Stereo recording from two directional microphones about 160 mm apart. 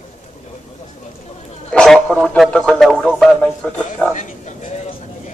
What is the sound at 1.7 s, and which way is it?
A man's voice, 5° left (ahead or behind).